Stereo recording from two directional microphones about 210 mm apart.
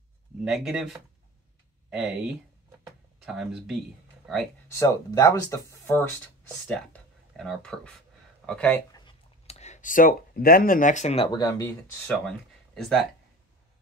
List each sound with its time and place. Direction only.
0.5 s speech: centre (ahead or behind)
4.6 s speech: 15° left (ahead or behind)
8.9 s writing: 25° left (ahead or behind)
11.3 s speech: 15° left (ahead or behind)
12.3 s speech: 5° left (ahead or behind)